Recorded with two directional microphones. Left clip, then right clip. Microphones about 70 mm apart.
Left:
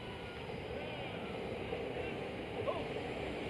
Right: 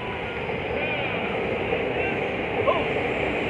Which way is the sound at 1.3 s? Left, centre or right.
Left.